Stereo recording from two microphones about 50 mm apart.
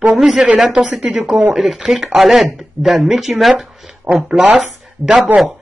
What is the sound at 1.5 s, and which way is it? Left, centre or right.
Speech, centre.